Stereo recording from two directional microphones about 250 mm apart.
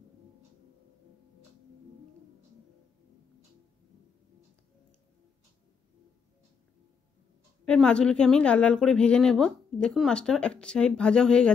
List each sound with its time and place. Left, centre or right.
7.6 s a woman's voice: centre